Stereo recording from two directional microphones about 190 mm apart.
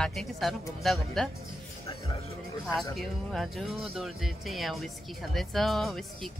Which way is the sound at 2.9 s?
Centre (ahead or behind).